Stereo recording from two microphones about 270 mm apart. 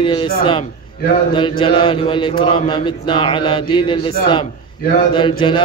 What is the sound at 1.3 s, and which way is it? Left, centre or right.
A man's voice, centre.